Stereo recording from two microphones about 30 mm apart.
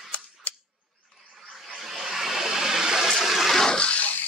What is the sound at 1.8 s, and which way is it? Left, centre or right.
Vehicle, centre.